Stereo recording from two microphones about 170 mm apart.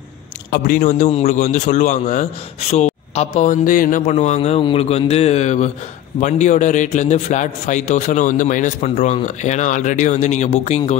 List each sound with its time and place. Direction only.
0.5 s a man's voice: 50° left (ahead or behind)